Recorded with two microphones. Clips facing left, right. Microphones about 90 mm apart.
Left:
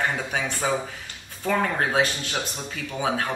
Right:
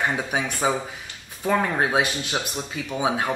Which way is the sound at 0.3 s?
15° right (ahead or behind).